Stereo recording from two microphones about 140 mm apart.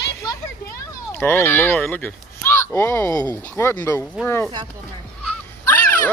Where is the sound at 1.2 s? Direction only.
15° left (ahead or behind).